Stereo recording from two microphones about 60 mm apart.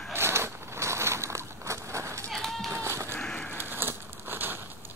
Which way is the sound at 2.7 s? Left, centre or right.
Right.